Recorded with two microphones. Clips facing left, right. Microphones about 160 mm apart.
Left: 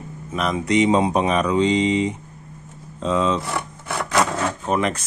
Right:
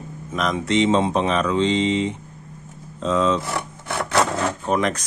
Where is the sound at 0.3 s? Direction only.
5° left (ahead or behind).